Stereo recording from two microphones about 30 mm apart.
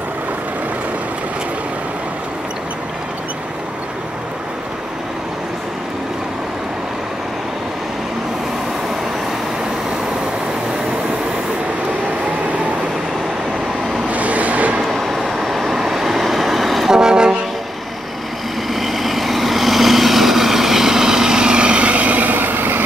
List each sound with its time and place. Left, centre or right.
14.1 s vehicle: right
14.9 s vehicle: centre
16.9 s vehicle: right
18.7 s vehicle: centre; by 21.8 s right
21.8 s vehicle: right